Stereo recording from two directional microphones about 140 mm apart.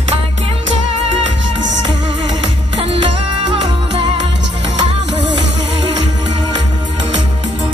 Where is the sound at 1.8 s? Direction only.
35° right (ahead or behind).